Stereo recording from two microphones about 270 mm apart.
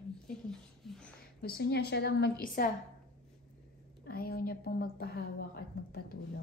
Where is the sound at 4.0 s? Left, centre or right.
Left.